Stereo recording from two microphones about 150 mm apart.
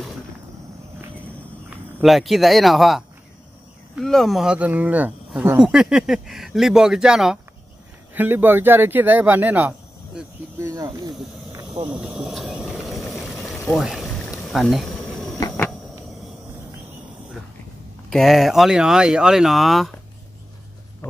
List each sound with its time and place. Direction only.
2.0 s speech: centre (ahead or behind); by 11.1 s 20° right (ahead or behind)
11.9 s a sound: 10° right (ahead or behind)
14.5 s insect: centre (ahead or behind)
18.1 s speech: centre (ahead or behind)
21.0 s speech: 15° left (ahead or behind)